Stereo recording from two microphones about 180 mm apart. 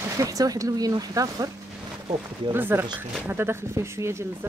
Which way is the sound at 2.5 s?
10° right (ahead or behind).